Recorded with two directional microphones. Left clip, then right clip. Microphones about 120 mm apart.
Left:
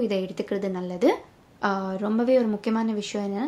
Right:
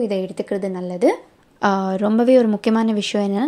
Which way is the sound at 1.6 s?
90° right.